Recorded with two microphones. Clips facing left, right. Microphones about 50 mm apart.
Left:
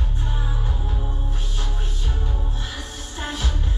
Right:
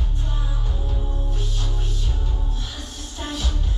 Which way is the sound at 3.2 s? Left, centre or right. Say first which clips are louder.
Left 1 dB; centre.